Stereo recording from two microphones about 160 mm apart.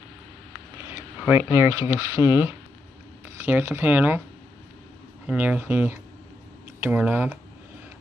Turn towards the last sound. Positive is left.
turn(degrees=-10)  # may be behind; listen again after turning